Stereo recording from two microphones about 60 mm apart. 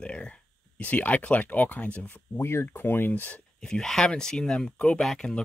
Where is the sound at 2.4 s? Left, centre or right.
Left.